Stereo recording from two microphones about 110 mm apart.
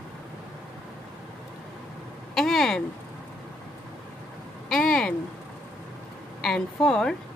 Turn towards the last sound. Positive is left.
turn(degrees=5)  # may be behind; listen again after turning